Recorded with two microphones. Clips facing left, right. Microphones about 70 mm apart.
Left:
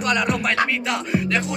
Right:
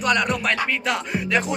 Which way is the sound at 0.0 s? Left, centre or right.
Centre.